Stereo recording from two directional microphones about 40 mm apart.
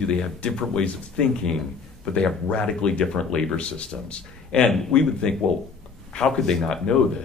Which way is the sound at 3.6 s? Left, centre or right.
Left.